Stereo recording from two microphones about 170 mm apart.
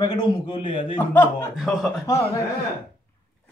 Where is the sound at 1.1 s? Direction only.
10° left (ahead or behind).